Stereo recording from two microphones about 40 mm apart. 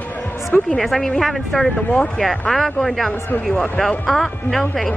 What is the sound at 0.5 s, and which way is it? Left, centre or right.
Speech, left.